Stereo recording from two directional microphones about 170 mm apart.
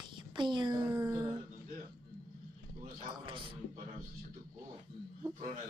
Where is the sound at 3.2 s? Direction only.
30° right (ahead or behind).